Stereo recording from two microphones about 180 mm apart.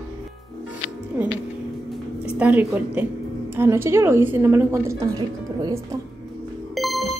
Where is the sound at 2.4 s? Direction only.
10° right (ahead or behind).